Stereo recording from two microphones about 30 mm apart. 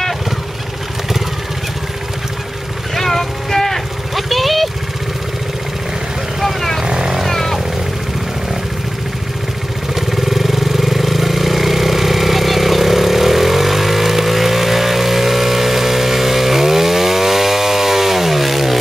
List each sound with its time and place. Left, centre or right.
3.0 s a sound: centre
4.1 s vehicle: centre
6.4 s vehicle: centre
6.8 s vehicle: right
7.2 s vehicle: centre
9.9 s vehicle: centre